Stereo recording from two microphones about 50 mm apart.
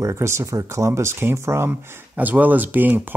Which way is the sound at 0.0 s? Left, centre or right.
Right.